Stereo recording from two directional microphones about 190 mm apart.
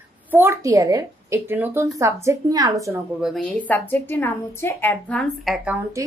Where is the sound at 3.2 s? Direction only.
Centre (ahead or behind).